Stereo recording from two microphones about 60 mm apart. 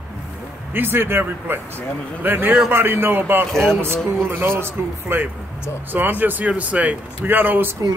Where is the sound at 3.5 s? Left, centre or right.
Centre.